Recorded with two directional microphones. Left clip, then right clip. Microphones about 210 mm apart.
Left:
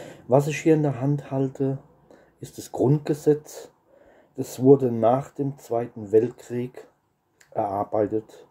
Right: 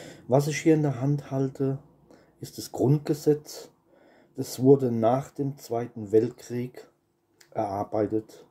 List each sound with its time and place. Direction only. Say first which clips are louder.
0.0 s speech: left 4 dB; 5° left (ahead or behind)
2.7 s speech: left 3 dB; 10° right (ahead or behind)
3.1 s speech: left 3 dB; 5° left (ahead or behind)